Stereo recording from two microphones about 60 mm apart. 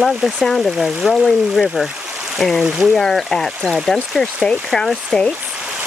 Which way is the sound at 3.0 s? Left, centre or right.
Centre.